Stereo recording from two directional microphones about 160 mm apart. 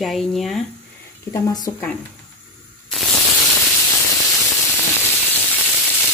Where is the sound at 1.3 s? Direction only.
25° left (ahead or behind).